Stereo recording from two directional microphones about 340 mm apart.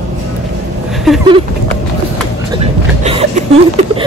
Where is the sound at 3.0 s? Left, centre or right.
Centre.